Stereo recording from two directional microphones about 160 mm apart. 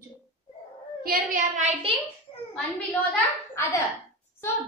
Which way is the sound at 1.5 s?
45° right (ahead or behind).